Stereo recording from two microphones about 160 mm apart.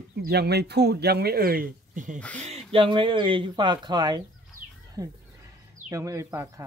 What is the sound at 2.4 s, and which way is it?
Speech, 40° right (ahead or behind).